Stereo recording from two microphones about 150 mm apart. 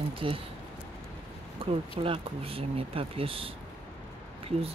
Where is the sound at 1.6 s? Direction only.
35° right (ahead or behind).